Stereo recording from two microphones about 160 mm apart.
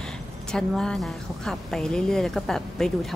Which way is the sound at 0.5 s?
5° left (ahead or behind).